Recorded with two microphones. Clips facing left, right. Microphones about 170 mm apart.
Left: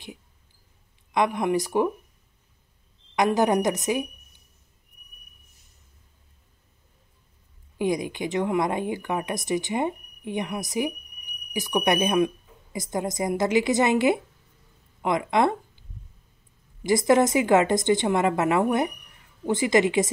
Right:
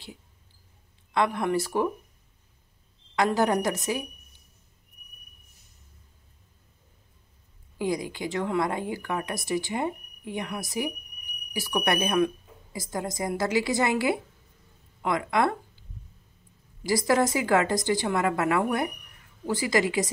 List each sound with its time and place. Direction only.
1.1 s speech: 15° left (ahead or behind)
3.2 s speech: 20° left (ahead or behind)
7.7 s speech: 20° left (ahead or behind)
16.8 s speech: 20° left (ahead or behind)